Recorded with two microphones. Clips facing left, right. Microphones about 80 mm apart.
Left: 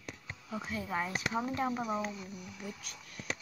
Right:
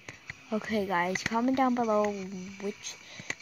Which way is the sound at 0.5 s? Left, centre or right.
Right.